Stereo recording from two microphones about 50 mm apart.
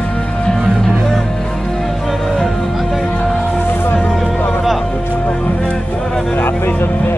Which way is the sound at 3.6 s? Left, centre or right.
Left.